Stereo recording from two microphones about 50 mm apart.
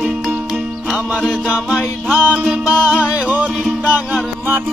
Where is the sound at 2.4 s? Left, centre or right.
Right.